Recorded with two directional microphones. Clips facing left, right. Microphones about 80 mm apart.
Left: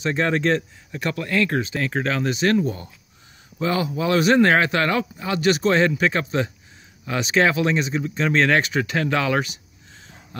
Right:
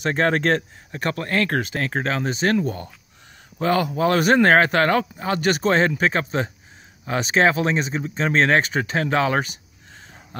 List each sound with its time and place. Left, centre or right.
0.0 s a man's voice: right